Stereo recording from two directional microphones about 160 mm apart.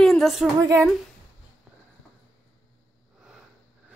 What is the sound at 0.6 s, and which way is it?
Speech, 20° right (ahead or behind).